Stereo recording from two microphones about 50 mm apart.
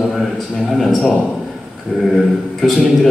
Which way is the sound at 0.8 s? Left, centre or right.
Centre.